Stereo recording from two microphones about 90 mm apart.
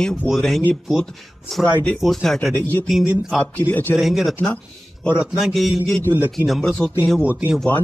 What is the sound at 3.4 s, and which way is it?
Speech, 15° left (ahead or behind).